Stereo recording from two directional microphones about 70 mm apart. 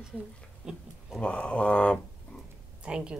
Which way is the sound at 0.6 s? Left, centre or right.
Centre.